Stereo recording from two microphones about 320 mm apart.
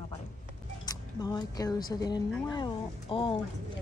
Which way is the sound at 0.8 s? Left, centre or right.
Centre.